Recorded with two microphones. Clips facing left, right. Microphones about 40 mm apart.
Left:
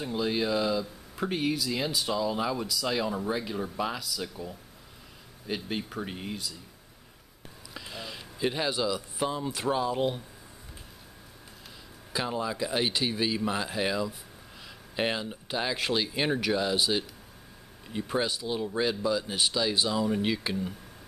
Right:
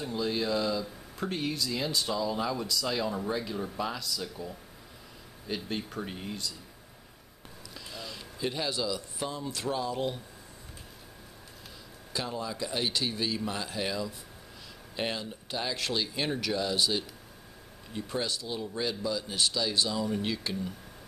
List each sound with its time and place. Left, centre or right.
0.0 s speech: centre
5.7 s speech: centre
7.7 s speech: centre
12.1 s speech: left